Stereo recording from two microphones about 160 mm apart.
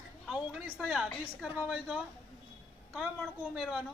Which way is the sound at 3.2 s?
Centre (ahead or behind).